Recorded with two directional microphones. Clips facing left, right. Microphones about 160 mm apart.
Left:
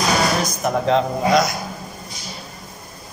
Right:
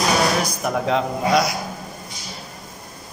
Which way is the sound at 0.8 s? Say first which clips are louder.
Left 3 dB; 5° right (ahead or behind).